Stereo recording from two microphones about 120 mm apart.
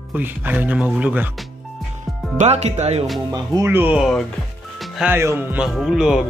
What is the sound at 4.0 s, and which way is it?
Speech, centre (ahead or behind).